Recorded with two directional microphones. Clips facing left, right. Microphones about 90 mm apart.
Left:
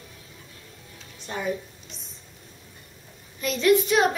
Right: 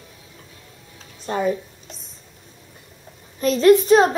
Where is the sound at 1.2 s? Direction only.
40° right (ahead or behind).